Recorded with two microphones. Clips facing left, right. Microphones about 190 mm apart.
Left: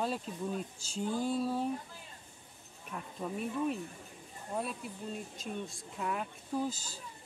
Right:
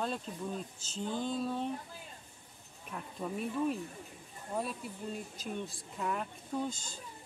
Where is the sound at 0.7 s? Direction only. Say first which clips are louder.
Left 2 dB; 10° left (ahead or behind).